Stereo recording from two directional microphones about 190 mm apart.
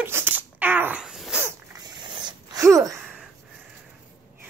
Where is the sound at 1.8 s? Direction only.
20° right (ahead or behind).